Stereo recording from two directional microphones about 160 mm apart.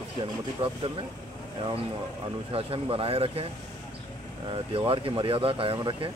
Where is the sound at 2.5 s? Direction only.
35° right (ahead or behind).